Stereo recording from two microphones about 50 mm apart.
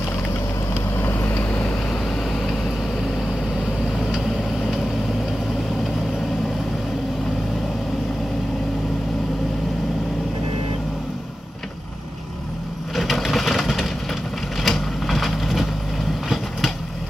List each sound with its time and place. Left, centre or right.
0.9 s vehicle: left
12.9 s vehicle: centre